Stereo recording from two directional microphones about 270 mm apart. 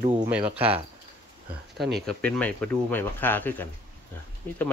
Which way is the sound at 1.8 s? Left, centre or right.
Centre.